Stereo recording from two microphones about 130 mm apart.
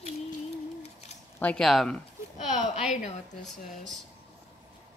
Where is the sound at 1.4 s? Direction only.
5° left (ahead or behind).